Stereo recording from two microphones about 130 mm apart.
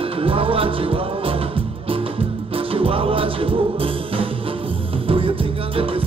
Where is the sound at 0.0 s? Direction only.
45° right (ahead or behind).